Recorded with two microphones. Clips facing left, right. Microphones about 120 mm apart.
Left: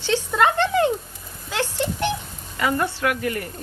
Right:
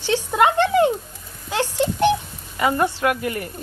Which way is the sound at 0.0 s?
15° right (ahead or behind).